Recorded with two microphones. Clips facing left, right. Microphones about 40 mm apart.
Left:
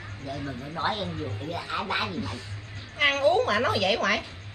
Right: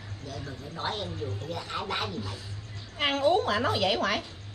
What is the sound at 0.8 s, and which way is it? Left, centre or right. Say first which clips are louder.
Speech: left 4 dB; centre.